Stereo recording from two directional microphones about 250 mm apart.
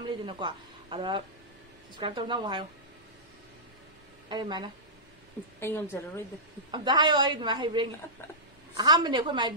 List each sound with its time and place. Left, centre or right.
0.2 s a woman's voice: centre
4.3 s a woman's voice: centre
5.6 s a woman's voice: centre
6.7 s a woman's voice: centre